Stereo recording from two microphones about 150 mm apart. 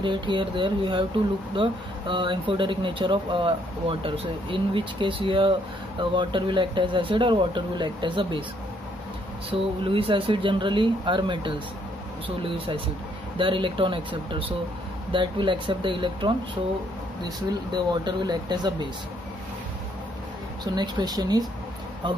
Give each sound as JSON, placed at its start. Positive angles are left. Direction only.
{"t": 0.0, "sound": "speech", "side_deg": -30}
{"t": 9.5, "sound": "speech", "side_deg": -35}
{"t": 17.5, "sound": "speech", "side_deg": -30}
{"t": 20.6, "sound": "speech", "side_deg": -30}